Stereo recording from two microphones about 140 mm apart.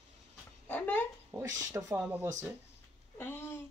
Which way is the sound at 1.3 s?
25° right (ahead or behind).